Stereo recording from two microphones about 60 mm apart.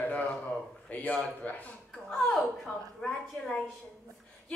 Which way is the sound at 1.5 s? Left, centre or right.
Left.